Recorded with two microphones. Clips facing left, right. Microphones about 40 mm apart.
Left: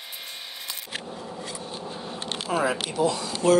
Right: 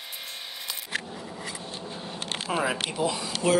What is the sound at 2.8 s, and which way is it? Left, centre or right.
Speech, centre.